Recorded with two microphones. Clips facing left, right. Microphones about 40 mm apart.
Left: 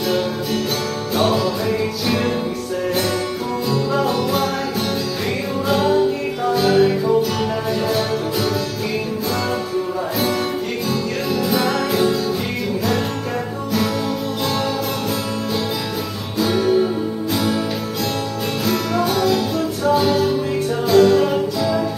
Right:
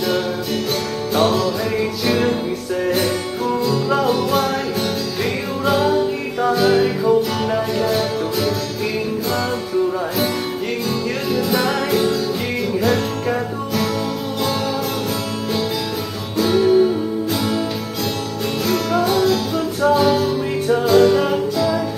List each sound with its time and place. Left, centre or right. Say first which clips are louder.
1.1 s music: right 1 dB; centre
3.9 s music: right 3 dB; centre
5.7 s music: even; centre
11.3 s music: even; centre
16.3 s music: right 3 dB; centre
18.7 s music: right 2 dB; centre